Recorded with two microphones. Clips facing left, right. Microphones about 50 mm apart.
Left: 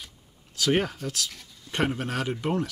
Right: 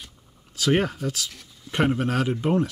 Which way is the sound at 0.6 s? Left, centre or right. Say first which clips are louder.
Right 3 dB; centre.